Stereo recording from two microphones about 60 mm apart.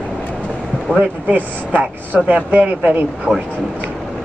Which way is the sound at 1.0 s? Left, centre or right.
Right.